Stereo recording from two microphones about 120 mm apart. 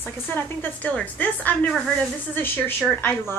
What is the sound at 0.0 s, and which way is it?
A woman's voice, 15° left (ahead or behind).